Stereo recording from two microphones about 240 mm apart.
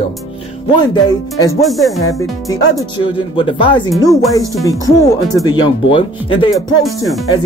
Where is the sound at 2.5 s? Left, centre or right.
Centre.